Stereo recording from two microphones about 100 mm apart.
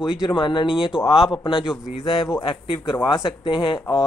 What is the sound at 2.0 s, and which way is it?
Speech, 60° left (ahead or behind).